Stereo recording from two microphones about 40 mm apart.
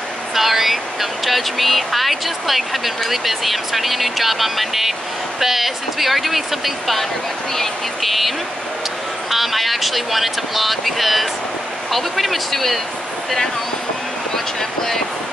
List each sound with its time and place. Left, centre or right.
0.3 s speech: centre
14.3 s speech: centre